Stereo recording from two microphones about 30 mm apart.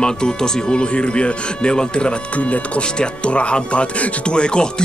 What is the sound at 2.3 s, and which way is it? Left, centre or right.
Speech, left.